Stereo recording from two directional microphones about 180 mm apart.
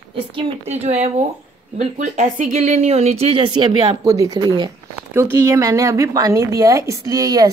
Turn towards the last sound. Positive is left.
turn(degrees=-20)  # may be behind; listen again after turning